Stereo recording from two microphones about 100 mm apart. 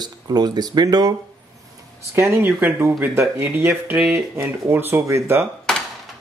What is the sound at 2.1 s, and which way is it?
Speech, 25° right (ahead or behind).